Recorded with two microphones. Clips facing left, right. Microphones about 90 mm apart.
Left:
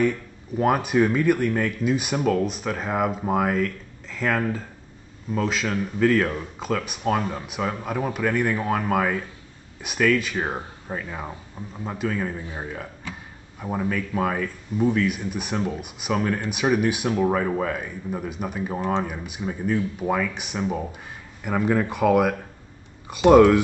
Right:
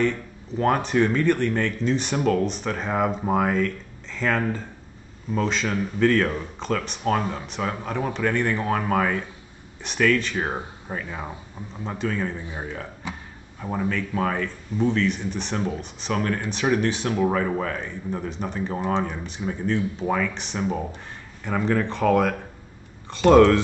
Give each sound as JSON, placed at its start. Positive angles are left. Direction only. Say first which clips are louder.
{"t": 0.0, "sound": "speech", "louder": "left 1 dB", "side_deg": 10}
{"t": 13.1, "sound": "speech", "louder": "right 5 dB", "side_deg": -20}
{"t": 13.6, "sound": "speech", "louder": "even", "side_deg": 5}